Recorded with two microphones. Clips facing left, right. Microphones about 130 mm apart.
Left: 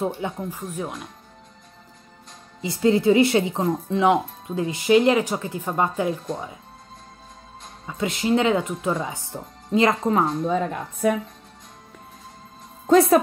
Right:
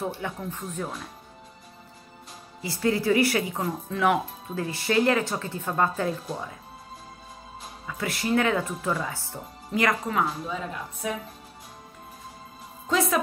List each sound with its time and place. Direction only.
0.0 s speech: 20° left (ahead or behind)
0.6 s speech: 10° left (ahead or behind)
2.6 s speech: 20° left (ahead or behind)
7.8 s speech: 20° left (ahead or behind)
10.4 s speech: 50° left (ahead or behind)